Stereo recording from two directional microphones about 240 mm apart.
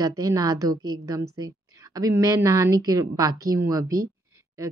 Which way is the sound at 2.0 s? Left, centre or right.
Centre.